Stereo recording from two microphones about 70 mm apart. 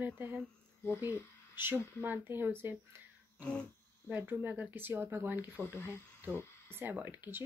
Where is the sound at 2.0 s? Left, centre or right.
Right.